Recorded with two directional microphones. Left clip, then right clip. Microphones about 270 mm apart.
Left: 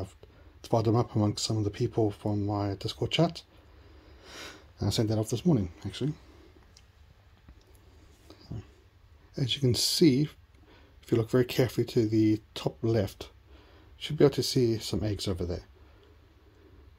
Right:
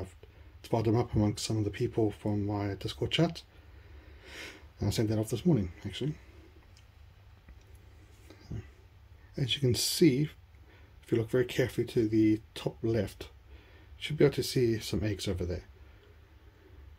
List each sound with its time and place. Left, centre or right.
0.6 s speech: centre
9.3 s speech: centre